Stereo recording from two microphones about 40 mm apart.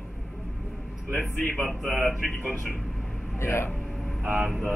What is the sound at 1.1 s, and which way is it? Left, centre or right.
Speech, left.